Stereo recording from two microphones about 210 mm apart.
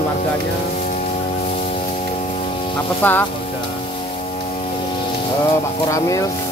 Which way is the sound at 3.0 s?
10° left (ahead or behind).